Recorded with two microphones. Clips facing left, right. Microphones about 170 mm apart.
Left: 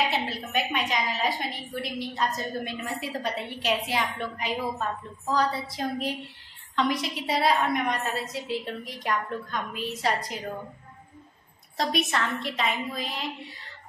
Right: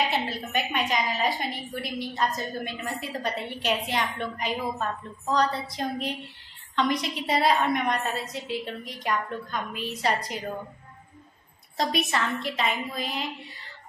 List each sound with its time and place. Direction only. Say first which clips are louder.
0.1 s a woman's voice: even; centre (ahead or behind)
11.7 s a woman's voice: even; centre (ahead or behind)